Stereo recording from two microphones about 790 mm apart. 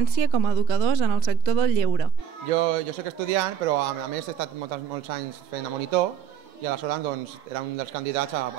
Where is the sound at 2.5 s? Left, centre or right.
Right.